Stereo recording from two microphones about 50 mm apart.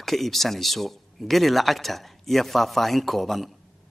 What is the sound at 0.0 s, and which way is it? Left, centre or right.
A man's voice, centre.